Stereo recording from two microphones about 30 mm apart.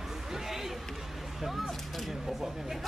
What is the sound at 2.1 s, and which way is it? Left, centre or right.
Speech, centre.